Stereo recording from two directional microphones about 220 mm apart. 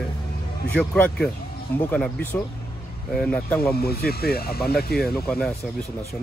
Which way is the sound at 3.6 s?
45° left (ahead or behind).